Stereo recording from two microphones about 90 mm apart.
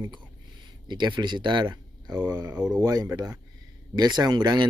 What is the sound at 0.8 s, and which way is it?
Speech, 60° right (ahead or behind).